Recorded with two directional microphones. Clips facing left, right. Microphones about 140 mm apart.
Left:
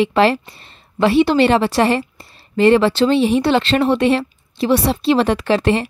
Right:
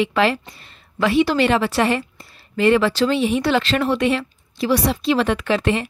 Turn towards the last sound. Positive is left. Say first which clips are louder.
# left 4 dB
turn(degrees=35)  # may be behind; listen again after turning